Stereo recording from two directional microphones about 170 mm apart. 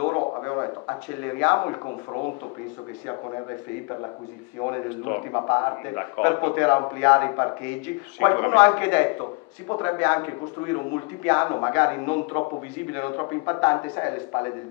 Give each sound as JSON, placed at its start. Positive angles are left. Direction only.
{"t": 0.0, "sound": "a sound", "side_deg": 30}
{"t": 1.4, "sound": "a man's voice", "side_deg": 20}
{"t": 4.6, "sound": "a man's voice", "side_deg": 25}